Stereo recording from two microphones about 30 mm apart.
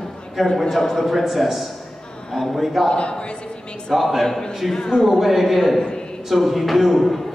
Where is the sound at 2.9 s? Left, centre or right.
Left.